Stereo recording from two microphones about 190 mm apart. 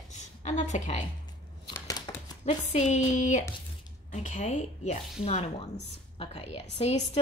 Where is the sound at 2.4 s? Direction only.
35° left (ahead or behind).